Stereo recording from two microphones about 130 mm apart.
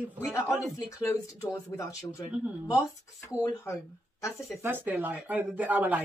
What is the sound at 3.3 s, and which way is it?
Speech, 20° left (ahead or behind).